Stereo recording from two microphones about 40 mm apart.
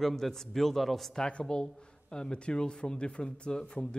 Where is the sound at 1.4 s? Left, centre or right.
Centre.